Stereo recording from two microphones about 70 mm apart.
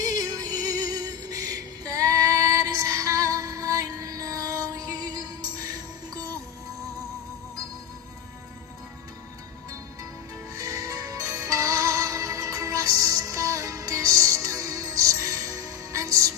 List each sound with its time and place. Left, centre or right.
0.0 s music: right
10.5 s music: right